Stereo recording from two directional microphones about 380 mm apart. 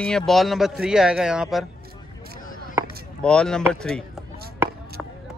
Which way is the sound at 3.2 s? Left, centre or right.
Centre.